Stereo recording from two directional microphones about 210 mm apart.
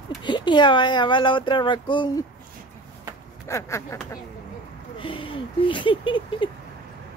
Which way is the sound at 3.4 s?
15° left (ahead or behind).